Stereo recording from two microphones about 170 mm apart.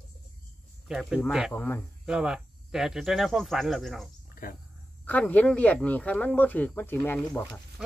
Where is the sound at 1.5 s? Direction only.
10° left (ahead or behind).